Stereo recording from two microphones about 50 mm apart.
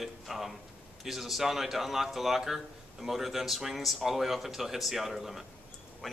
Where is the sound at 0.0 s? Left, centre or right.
Centre.